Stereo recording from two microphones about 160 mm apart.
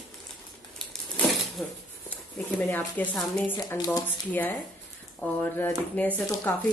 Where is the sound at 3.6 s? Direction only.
20° left (ahead or behind).